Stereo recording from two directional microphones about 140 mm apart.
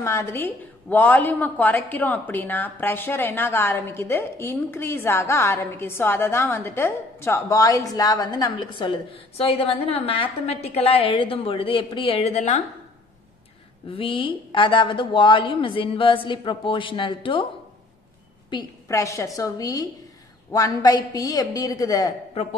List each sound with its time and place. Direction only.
0.0 s a woman's voice: 20° left (ahead or behind); by 12.6 s 55° left (ahead or behind)
13.8 s speech: 40° left (ahead or behind)
18.5 s a woman's voice: 25° left (ahead or behind)
22.3 s a man's voice: 45° left (ahead or behind)